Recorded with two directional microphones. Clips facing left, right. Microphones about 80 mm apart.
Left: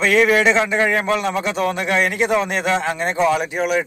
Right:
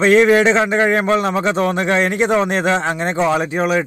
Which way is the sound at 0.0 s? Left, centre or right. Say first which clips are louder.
Right 4 dB; right.